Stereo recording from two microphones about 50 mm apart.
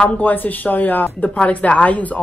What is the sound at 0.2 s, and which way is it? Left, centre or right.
A woman's voice, left.